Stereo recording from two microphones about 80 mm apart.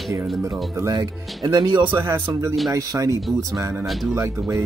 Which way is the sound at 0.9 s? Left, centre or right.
Right.